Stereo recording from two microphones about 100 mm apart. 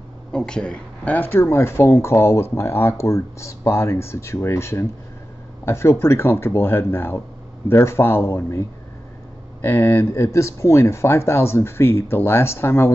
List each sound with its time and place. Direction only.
0.3 s speech: 10° left (ahead or behind); by 12.9 s 25° left (ahead or behind)